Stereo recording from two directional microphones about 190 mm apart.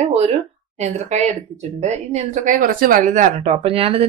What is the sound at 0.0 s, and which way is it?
Speech, 35° right (ahead or behind).